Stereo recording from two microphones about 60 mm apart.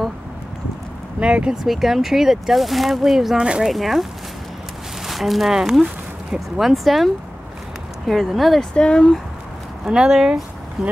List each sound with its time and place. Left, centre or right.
1.2 s speech: centre
1.6 s speech: centre
3.3 s speech: centre
3.6 s speech: centre
8.1 s speech: centre
8.7 s speech: centre
9.8 s speech: centre